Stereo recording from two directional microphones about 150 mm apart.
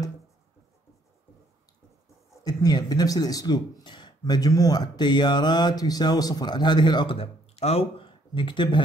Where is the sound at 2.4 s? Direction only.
25° left (ahead or behind).